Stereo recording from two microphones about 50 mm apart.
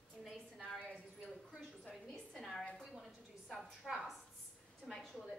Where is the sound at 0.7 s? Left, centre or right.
Centre.